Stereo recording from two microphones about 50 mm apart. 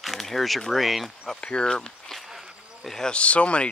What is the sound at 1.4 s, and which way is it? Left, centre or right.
Speech, centre.